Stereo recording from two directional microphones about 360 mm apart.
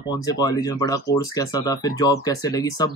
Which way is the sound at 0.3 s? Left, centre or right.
Centre.